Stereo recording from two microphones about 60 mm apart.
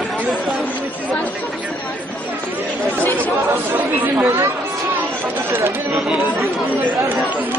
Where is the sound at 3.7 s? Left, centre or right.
Right.